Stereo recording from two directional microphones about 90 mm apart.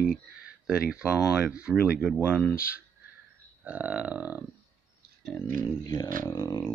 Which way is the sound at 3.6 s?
15° right (ahead or behind).